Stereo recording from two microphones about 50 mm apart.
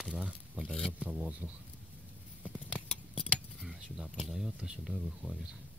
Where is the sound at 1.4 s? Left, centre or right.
Right.